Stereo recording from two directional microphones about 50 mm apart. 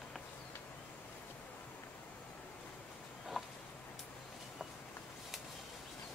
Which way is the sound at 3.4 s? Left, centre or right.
Centre.